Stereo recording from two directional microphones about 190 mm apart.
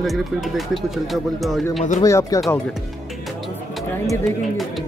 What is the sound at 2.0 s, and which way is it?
Speech, 15° left (ahead or behind).